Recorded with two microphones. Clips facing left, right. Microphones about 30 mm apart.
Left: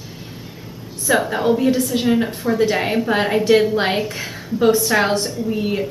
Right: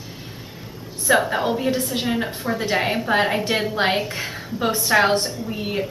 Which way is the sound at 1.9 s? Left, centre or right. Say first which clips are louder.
Left 5 dB; centre.